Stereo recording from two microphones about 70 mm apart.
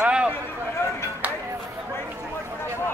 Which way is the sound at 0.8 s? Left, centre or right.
Left.